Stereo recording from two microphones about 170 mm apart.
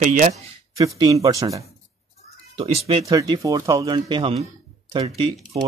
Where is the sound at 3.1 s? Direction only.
25° right (ahead or behind).